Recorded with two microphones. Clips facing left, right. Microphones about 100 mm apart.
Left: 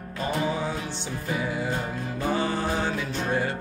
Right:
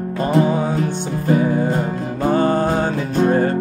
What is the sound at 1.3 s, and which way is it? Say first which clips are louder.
Music: right 12 dB; 40° right (ahead or behind).